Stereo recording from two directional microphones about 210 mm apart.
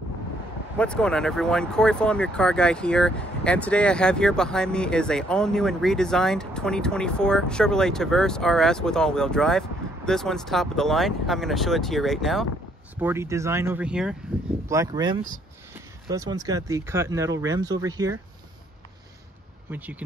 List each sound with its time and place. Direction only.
0.7 s speech: 5° left (ahead or behind)
12.9 s speech: 10° right (ahead or behind)
14.7 s speech: 15° right (ahead or behind)
19.7 s speech: 10° right (ahead or behind)